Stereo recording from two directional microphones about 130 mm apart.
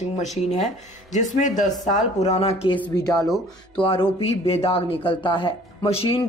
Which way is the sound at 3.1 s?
5° left (ahead or behind).